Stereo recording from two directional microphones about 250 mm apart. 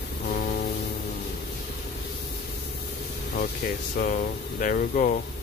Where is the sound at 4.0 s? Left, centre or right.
Left.